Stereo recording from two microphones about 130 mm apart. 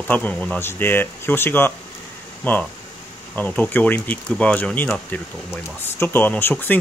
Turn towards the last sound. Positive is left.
turn(degrees=15)  # may be behind; listen again after turning